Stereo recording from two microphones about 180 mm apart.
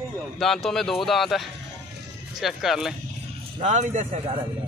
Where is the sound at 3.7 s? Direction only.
45° right (ahead or behind).